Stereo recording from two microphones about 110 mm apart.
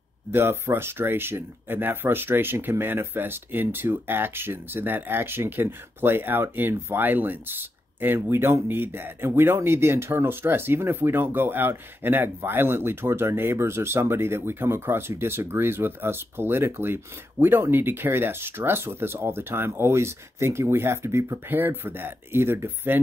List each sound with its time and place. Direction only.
0.3 s speech: 20° right (ahead or behind)